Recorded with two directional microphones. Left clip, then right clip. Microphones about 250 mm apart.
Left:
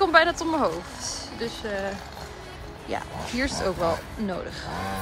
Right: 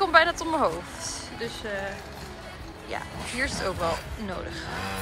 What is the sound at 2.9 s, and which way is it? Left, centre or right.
Speech, centre.